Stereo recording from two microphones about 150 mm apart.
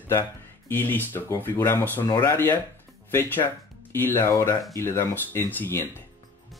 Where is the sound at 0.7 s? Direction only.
15° left (ahead or behind).